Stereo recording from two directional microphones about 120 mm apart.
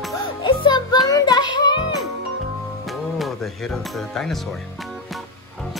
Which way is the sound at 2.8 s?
Centre (ahead or behind).